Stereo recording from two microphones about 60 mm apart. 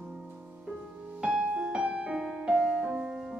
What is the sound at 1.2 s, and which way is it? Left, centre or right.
Music, centre.